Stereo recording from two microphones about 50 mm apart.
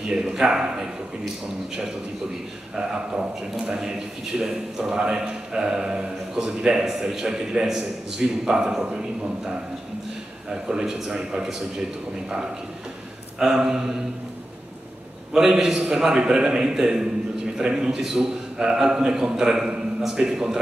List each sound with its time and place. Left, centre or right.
0.1 s a man's voice: centre
2.8 s a man's voice: centre
10.5 s a man's voice: centre
13.4 s a man's voice: centre
15.3 s a man's voice: centre